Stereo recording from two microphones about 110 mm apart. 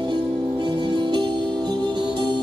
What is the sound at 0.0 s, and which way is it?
Music, 45° right (ahead or behind).